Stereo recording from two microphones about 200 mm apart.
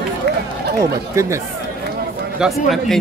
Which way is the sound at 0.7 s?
15° right (ahead or behind).